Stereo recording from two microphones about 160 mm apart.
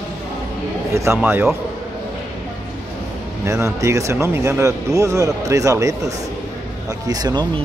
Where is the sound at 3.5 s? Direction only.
20° right (ahead or behind).